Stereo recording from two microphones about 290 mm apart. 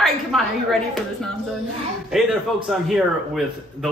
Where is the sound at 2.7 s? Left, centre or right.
Centre.